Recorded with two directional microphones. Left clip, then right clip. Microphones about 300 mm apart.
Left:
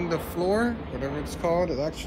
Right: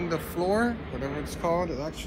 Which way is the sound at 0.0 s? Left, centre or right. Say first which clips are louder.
Left 2 dB; centre.